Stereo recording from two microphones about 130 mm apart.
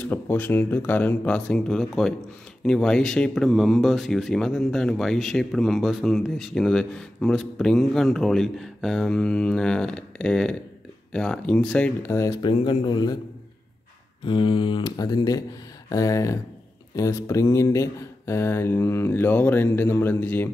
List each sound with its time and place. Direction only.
0.0 s speech: 15° left (ahead or behind)
12.4 s speech: 40° left (ahead or behind)
14.2 s speech: 40° left (ahead or behind); by 20.4 s 15° left (ahead or behind)